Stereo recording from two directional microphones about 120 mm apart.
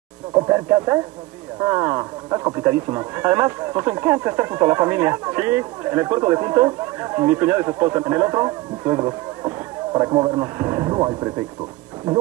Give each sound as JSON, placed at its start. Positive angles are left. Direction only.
{"t": 0.5, "sound": "speech", "side_deg": -25}